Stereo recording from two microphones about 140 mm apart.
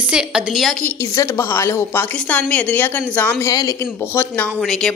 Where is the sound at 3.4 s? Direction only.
25° left (ahead or behind); by 4.9 s 5° left (ahead or behind).